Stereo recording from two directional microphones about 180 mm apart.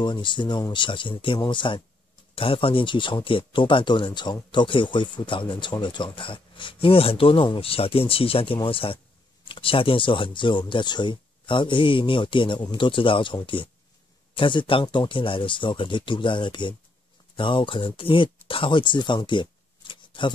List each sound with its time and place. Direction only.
0.0 s speech: 25° left (ahead or behind)